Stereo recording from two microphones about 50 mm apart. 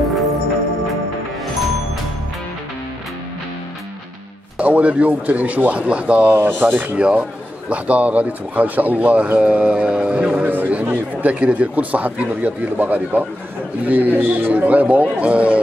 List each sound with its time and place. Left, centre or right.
4.6 s speech: right
6.3 s a man's voice: right
7.0 s speech: right
10.4 s a man's voice: right